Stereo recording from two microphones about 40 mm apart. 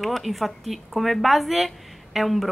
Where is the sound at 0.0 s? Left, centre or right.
Centre.